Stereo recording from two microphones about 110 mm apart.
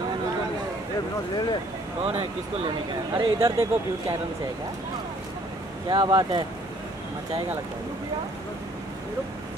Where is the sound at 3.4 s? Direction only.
30° right (ahead or behind).